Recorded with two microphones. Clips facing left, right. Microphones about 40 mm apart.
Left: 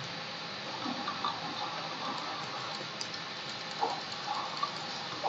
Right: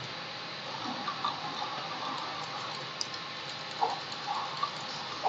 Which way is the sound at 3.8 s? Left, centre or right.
Right.